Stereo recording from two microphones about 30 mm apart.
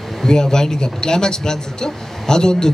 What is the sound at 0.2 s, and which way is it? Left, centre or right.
Speech, left.